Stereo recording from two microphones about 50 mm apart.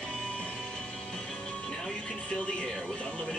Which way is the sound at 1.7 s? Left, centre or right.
Centre.